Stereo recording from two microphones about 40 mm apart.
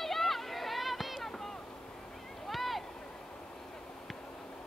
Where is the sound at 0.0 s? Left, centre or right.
Centre.